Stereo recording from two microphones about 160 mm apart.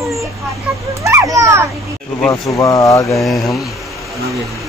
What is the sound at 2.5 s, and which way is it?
Speech, 20° left (ahead or behind).